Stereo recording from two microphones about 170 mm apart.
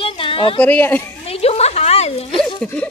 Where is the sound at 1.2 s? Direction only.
35° left (ahead or behind).